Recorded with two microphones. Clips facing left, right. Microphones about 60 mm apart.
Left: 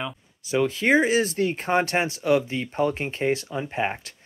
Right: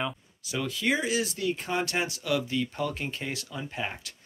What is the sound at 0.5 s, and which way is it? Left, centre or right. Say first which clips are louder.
Speech: left 8 dB; left.